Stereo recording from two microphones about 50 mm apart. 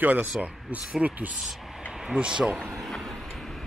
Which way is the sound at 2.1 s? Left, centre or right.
Centre.